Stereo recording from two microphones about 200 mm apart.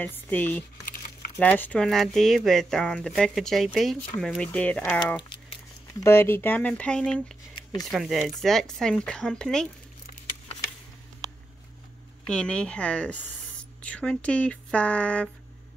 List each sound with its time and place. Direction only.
0.0 s speech: 10° left (ahead or behind)
5.3 s a sound: 25° left (ahead or behind)
6.0 s speech: 10° left (ahead or behind)
12.3 s speech: 5° left (ahead or behind)